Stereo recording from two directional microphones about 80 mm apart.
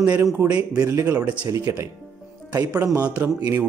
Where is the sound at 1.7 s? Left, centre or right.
Right.